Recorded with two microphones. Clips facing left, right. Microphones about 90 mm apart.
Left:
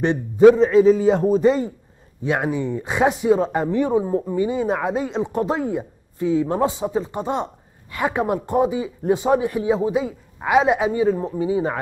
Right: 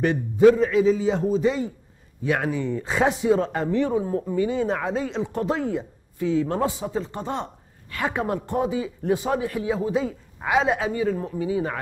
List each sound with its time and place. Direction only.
0.0 s speech: 25° left (ahead or behind)
0.7 s a man's voice: 45° left (ahead or behind)
2.2 s a man's voice: 20° left (ahead or behind)